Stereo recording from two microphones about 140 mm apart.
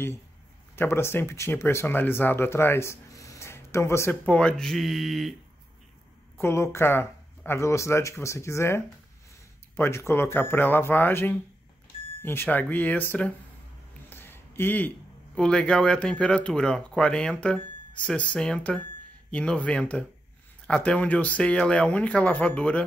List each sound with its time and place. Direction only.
0.7 s speech: 15° left (ahead or behind)
4.3 s speech: 5° left (ahead or behind)
6.4 s speech: 20° left (ahead or behind)
14.0 s a sound: 15° left (ahead or behind)
15.3 s speech: 5° left (ahead or behind)